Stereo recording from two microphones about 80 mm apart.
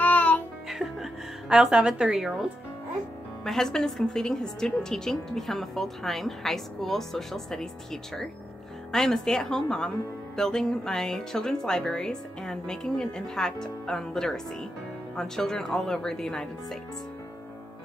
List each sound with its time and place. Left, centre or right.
0.0 s music: left
0.7 s music: centre
3.4 s a woman's voice: centre